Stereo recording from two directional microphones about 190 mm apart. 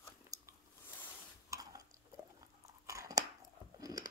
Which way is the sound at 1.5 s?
20° right (ahead or behind).